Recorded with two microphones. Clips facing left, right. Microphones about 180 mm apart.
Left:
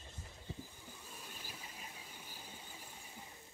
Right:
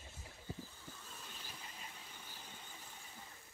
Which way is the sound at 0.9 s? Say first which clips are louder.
Left 2 dB; 10° left (ahead or behind).